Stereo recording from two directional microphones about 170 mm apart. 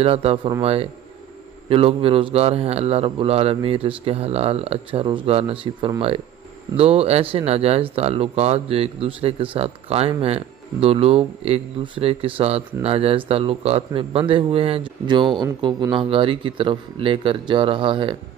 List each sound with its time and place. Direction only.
0.0 s speech: 35° right (ahead or behind)